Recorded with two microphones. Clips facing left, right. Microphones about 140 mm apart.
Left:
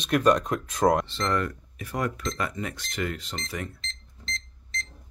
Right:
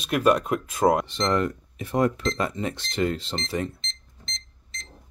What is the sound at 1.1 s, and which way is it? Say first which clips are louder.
Speech: right 3 dB; 20° right (ahead or behind).